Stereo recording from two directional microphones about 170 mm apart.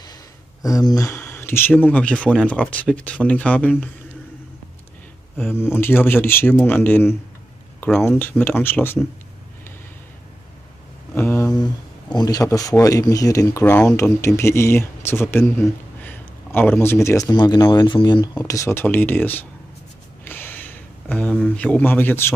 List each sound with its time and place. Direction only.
0.0 s speech: 20° left (ahead or behind)
5.5 s speech: 15° left (ahead or behind)
11.1 s speech: 10° left (ahead or behind)
11.6 s a man's voice: 25° left (ahead or behind)
20.2 s a sound: 10° left (ahead or behind)